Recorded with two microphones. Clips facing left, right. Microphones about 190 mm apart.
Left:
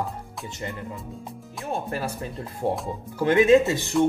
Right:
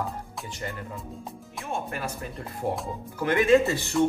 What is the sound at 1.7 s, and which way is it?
Speech, 35° left (ahead or behind).